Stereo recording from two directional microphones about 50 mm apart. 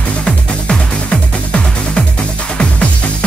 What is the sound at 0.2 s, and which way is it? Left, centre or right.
Music, centre.